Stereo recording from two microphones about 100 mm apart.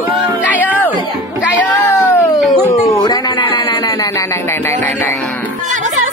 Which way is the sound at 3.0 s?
45° left (ahead or behind).